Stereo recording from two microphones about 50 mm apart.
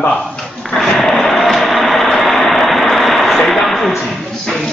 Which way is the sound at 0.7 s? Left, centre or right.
Centre.